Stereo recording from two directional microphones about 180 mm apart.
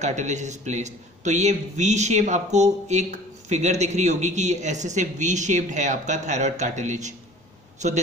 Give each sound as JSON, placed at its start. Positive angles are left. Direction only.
{"t": 0.0, "sound": "a man's voice", "side_deg": -40}